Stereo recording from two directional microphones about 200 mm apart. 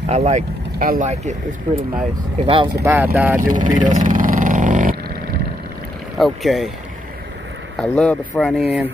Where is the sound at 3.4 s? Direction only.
40° right (ahead or behind).